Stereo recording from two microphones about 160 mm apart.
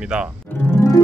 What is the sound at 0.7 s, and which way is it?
Music, 15° left (ahead or behind).